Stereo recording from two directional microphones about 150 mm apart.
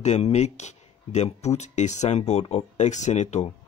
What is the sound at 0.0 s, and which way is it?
Speech, 45° left (ahead or behind).